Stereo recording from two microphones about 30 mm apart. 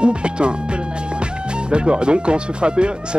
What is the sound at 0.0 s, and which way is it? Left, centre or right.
Speech, right.